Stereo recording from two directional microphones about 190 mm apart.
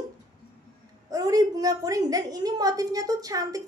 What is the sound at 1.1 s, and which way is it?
A woman's voice, 20° right (ahead or behind).